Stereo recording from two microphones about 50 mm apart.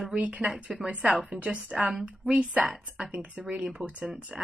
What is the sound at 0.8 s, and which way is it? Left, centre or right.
Speech, right.